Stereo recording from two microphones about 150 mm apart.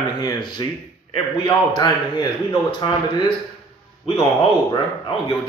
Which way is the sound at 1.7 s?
30° left (ahead or behind).